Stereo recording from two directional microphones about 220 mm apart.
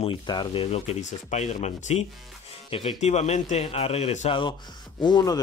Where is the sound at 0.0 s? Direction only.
20° left (ahead or behind).